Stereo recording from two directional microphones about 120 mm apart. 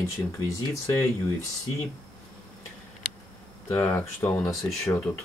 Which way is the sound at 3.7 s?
20° left (ahead or behind).